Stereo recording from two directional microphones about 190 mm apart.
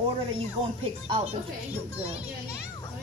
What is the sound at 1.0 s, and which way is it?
Speech, 30° right (ahead or behind).